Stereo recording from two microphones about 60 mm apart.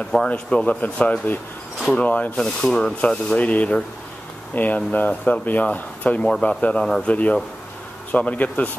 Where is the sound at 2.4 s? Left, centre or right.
Centre.